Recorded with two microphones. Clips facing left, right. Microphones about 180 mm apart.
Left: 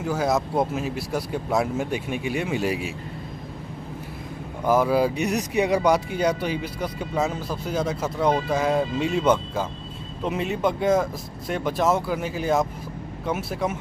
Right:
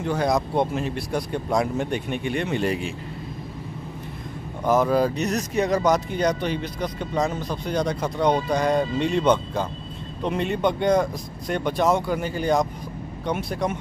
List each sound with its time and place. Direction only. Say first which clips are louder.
0.0 s speech: right 1 dB; 5° left (ahead or behind)
4.6 s speech: even; 5° left (ahead or behind)